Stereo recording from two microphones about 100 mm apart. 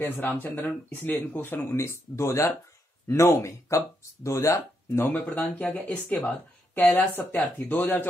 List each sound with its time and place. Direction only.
0.0 s speech: 20° left (ahead or behind)
6.0 s speech: 5° left (ahead or behind)
6.7 s speech: 15° left (ahead or behind)